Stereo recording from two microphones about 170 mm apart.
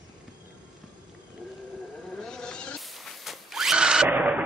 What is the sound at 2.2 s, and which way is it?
Bleat, 5° left (ahead or behind).